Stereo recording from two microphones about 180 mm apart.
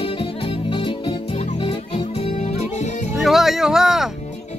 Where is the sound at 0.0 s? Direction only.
30° left (ahead or behind).